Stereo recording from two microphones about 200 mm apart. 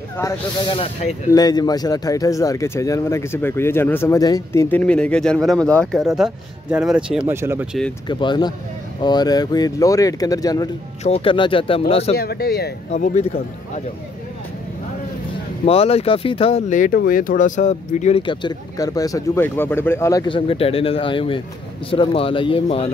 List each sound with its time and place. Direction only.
0.2 s speech: 15° left (ahead or behind); by 7.6 s 10° right (ahead or behind)
8.1 s speech: 20° left (ahead or behind)
12.2 s speech: 50° left (ahead or behind)
12.9 s speech: 35° left (ahead or behind)
15.6 s speech: 30° left (ahead or behind)